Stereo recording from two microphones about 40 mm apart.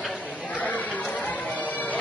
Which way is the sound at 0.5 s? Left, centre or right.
Left.